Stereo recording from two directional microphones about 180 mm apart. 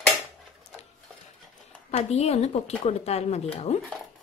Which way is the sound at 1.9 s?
35° left (ahead or behind).